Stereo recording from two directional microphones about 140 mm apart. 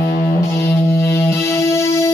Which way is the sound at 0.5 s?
15° left (ahead or behind).